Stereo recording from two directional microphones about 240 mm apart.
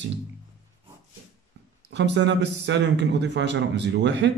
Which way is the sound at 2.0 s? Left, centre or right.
Right.